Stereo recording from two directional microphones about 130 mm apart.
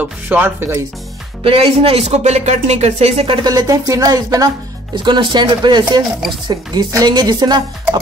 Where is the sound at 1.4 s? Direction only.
45° right (ahead or behind).